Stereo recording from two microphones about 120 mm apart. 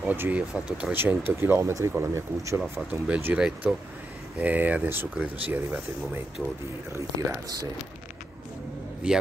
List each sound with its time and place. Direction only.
0.1 s speech: 15° right (ahead or behind)
6.9 s speech: 25° right (ahead or behind)
9.0 s speech: 10° right (ahead or behind)